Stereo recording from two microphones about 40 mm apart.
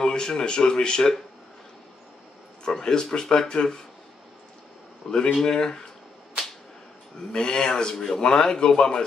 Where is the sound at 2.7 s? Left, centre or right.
Centre.